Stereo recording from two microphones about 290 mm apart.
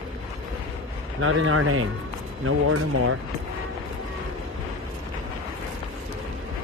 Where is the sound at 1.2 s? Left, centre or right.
Right.